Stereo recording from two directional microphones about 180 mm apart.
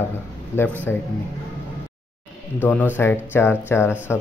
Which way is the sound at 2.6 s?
10° left (ahead or behind).